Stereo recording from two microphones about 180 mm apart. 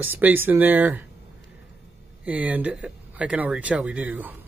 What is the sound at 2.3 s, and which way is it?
Speech, 10° right (ahead or behind).